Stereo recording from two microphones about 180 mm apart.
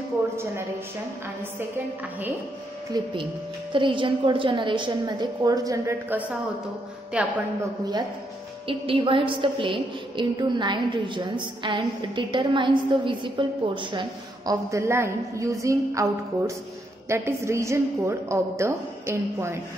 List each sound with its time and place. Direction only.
3.7 s a woman's voice: 25° right (ahead or behind); by 7.4 s 5° right (ahead or behind)
8.6 s a woman's voice: 30° right (ahead or behind); by 19.6 s 15° right (ahead or behind)